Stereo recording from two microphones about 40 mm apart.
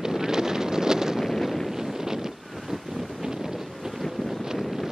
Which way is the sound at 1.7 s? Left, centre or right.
Centre.